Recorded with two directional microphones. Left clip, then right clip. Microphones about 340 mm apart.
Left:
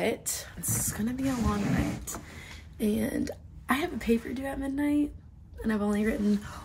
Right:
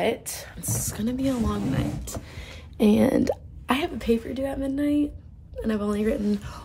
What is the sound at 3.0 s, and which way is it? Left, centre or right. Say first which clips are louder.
Speech: right 10 dB; right.